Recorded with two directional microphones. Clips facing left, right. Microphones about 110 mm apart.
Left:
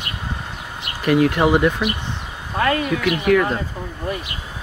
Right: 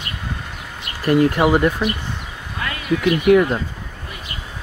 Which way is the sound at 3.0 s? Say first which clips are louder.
Right 5 dB; 30° right (ahead or behind).